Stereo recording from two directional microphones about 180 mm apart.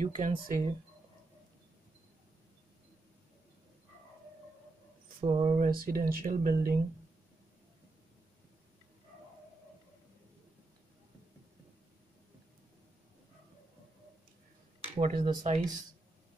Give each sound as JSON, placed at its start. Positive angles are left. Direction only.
{"t": 0.0, "sound": "speech", "side_deg": -45}
{"t": 5.2, "sound": "speech", "side_deg": -35}
{"t": 14.8, "sound": "a sound", "side_deg": -40}
{"t": 15.4, "sound": "speech", "side_deg": -40}